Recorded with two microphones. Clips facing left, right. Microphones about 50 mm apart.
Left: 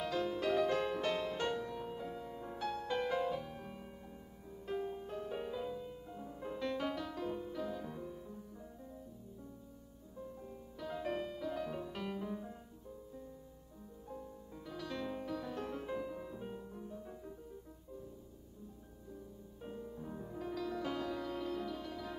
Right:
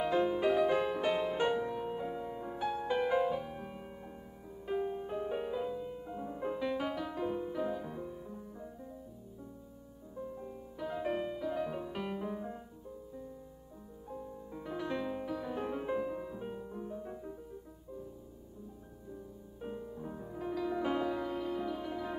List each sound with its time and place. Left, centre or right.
0.0 s music: right
6.6 s music: centre
10.1 s music: centre
14.1 s music: centre
15.0 s music: centre
19.6 s music: centre